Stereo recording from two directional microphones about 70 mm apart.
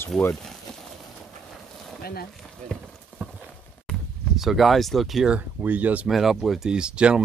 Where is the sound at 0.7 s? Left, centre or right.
Centre.